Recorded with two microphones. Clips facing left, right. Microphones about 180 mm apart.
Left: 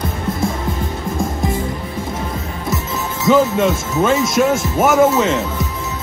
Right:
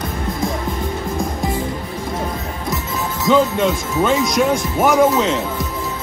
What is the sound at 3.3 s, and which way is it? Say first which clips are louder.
Speech: left 2 dB; centre (ahead or behind).